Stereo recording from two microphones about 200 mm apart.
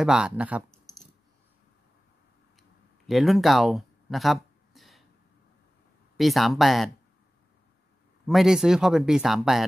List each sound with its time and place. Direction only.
0.0 s speech: 5° right (ahead or behind)
3.1 s a sound: centre (ahead or behind)
6.1 s speech: centre (ahead or behind)
8.3 s speech: centre (ahead or behind)